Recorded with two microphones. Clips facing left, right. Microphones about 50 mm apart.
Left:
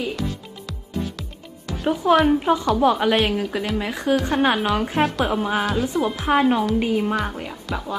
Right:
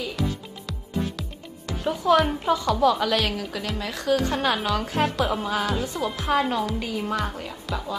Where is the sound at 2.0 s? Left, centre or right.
Left.